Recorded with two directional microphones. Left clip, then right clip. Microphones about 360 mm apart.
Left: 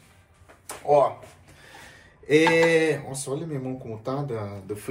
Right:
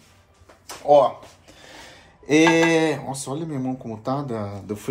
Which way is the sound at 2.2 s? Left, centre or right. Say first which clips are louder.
Right 2 dB; centre.